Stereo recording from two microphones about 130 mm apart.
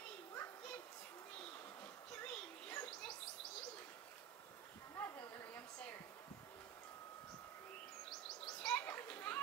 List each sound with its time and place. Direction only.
0.3 s children playing: 15° left (ahead or behind)
2.1 s children playing: 10° left (ahead or behind)
4.9 s a sound: 15° left (ahead or behind)
8.1 s children playing: 5° left (ahead or behind)